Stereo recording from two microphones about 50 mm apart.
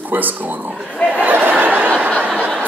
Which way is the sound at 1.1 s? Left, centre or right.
Right.